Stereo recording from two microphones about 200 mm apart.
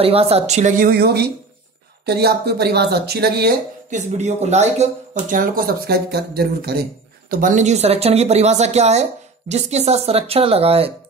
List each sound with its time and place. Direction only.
0.0 s speech: 30° right (ahead or behind); by 3.5 s 50° right (ahead or behind)
3.9 s speech: 35° right (ahead or behind)